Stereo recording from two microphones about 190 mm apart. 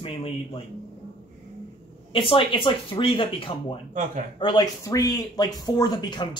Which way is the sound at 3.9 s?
40° right (ahead or behind).